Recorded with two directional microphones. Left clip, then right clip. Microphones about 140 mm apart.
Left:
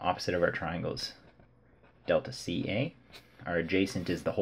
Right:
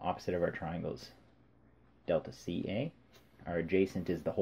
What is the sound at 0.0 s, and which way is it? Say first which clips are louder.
Speech: left 5 dB; 30° right (ahead or behind).